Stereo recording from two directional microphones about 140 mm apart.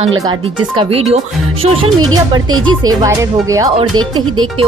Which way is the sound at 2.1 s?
30° right (ahead or behind).